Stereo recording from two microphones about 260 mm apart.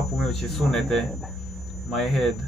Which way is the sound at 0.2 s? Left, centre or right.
Centre.